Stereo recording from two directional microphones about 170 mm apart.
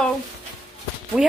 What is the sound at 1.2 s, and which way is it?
Speech, 5° right (ahead or behind).